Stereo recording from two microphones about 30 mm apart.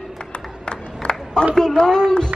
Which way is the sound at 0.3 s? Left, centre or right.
Left.